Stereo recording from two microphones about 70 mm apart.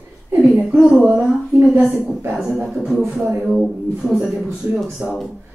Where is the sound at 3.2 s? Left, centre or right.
Right.